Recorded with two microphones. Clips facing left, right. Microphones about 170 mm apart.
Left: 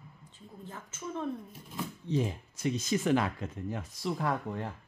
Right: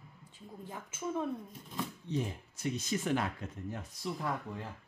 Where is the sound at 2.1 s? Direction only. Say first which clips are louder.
Left 7 dB; 90° left; by 4.7 s 70° left (ahead or behind).